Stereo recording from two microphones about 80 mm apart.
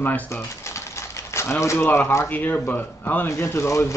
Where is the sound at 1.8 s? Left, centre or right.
Left.